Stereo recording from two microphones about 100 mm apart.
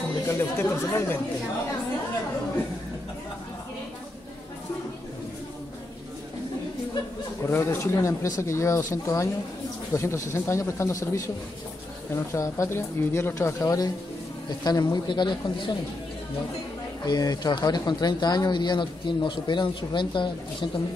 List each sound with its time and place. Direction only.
0.3 s speech: 25° left (ahead or behind)
7.4 s speech: 25° left (ahead or behind)
14.6 s speech: 45° left (ahead or behind)
17.0 s speech: 40° left (ahead or behind)